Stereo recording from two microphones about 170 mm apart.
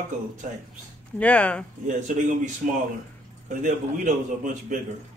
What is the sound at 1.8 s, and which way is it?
A woman's voice, 45° right (ahead or behind).